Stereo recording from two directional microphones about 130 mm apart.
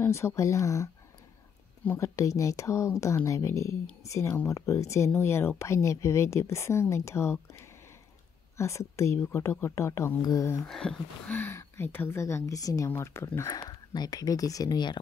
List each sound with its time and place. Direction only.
0.0 s speech: 20° left (ahead or behind)
1.9 s speech: 25° left (ahead or behind)
8.5 s speech: 20° left (ahead or behind)
10.6 s speech: 5° left (ahead or behind)
11.3 s speech: 20° left (ahead or behind)
13.5 s speech: 30° left (ahead or behind)